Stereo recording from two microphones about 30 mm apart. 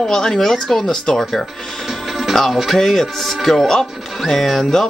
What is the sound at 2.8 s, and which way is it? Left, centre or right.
Speech, centre.